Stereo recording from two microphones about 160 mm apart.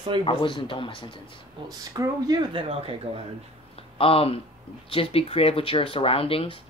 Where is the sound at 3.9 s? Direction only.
35° left (ahead or behind).